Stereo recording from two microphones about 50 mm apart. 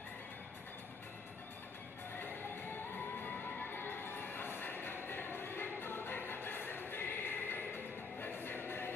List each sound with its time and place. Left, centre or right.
2.1 s music: left